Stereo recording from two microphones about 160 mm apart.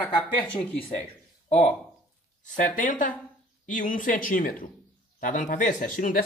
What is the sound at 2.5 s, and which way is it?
Speech, 55° left (ahead or behind).